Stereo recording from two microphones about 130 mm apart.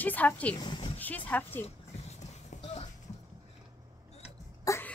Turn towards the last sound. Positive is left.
turn(degrees=15)  # may be behind; listen again after turning